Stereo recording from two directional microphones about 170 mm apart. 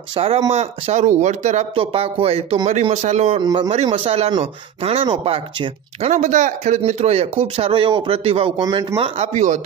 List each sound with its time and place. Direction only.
0.1 s speech: 35° right (ahead or behind)